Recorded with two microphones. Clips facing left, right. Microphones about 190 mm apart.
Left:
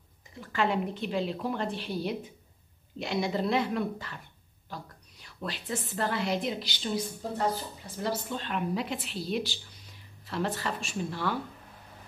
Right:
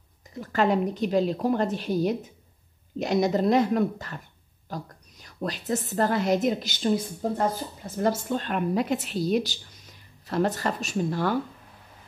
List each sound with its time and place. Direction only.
0.4 s a woman's voice: 40° right (ahead or behind)